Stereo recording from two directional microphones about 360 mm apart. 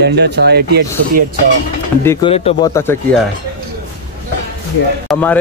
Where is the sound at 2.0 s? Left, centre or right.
Centre.